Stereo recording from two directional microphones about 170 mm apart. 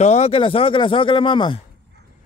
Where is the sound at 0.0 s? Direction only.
40° left (ahead or behind).